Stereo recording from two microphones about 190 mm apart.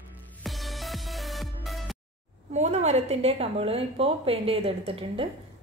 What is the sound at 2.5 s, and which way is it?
A woman's voice, 35° right (ahead or behind).